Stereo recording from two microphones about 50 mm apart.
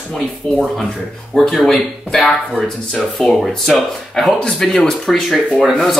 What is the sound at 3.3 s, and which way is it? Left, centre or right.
A man's voice, centre.